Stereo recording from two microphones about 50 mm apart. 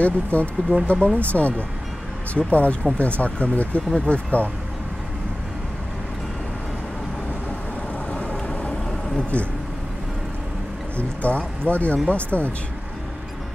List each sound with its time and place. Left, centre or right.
0.0 s speech: left
8.1 s vehicle: left
11.2 s speech: left